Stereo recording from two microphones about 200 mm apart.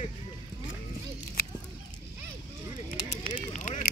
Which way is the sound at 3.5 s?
40° left (ahead or behind).